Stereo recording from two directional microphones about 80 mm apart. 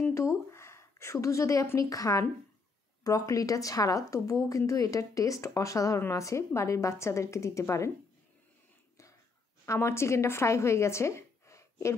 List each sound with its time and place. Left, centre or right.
0.1 s a woman's voice: left
9.7 s speech: left